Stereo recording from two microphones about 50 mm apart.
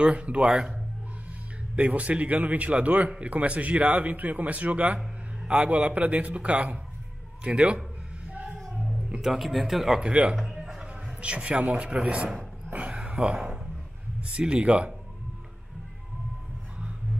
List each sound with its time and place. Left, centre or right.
0.0 s speech: right
1.8 s speech: right
8.5 s music: centre
9.1 s speech: centre
9.9 s speech: centre
10.3 s music: centre
10.8 s a man's voice: right
12.7 s a sound: right
14.2 s speech: right